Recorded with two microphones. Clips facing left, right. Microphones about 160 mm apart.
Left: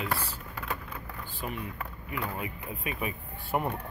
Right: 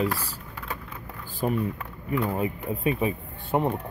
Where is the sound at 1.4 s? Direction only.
40° right (ahead or behind).